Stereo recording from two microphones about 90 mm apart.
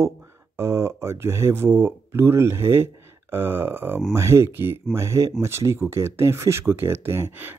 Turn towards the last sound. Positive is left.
turn(degrees=-25)  # may be behind; listen again after turning